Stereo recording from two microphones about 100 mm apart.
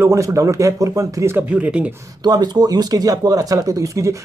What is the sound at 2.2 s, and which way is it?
Speech, 45° right (ahead or behind).